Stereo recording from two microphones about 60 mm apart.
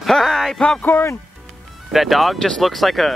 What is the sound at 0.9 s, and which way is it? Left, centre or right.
Speech, left.